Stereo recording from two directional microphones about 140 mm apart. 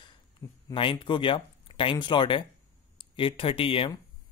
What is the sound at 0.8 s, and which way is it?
A man's voice, 35° left (ahead or behind).